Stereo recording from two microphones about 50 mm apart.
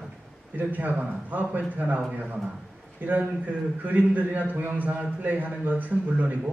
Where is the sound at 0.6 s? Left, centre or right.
Right.